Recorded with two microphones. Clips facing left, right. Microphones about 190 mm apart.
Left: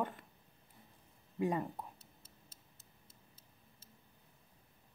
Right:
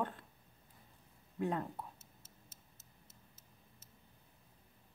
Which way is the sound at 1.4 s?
10° left (ahead or behind).